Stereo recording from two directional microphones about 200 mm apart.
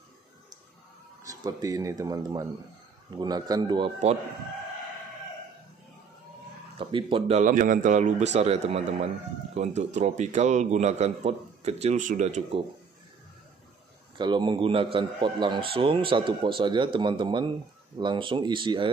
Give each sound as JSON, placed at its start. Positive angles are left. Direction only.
{"t": 1.2, "sound": "a man's voice", "side_deg": -15}
{"t": 6.8, "sound": "a man's voice", "side_deg": -25}
{"t": 14.1, "sound": "a man's voice", "side_deg": -25}